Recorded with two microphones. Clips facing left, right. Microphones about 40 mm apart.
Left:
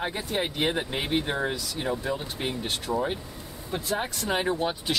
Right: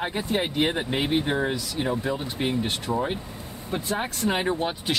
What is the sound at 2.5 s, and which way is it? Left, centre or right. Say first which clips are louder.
Speech: right 3 dB; right.